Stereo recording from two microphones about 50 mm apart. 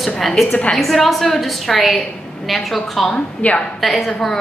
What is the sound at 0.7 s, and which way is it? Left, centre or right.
A woman's voice, centre.